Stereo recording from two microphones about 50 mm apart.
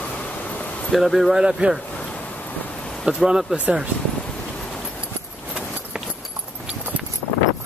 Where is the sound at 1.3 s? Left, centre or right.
Centre.